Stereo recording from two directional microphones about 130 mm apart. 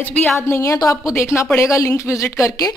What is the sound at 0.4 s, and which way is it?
A woman's voice, 20° left (ahead or behind).